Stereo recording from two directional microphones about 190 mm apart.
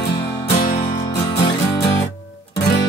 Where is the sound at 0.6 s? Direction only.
20° left (ahead or behind).